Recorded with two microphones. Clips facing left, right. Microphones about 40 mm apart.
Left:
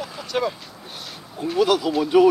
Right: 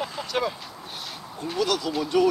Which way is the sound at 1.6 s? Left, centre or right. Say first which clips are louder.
Left 6 dB; centre.